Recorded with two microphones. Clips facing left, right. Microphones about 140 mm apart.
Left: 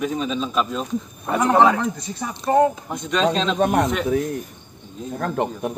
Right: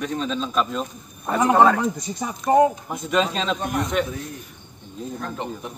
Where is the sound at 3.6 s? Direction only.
65° left (ahead or behind).